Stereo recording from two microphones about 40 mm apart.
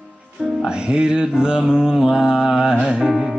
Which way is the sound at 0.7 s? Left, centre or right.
Right.